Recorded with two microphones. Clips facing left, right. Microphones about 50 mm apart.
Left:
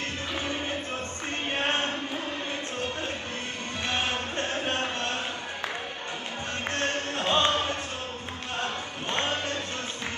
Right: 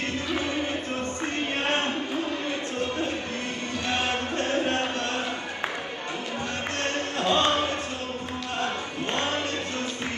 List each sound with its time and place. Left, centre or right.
7.2 s music: left